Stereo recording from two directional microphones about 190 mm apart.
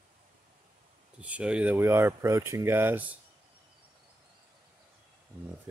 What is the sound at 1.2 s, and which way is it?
Speech, 5° right (ahead or behind).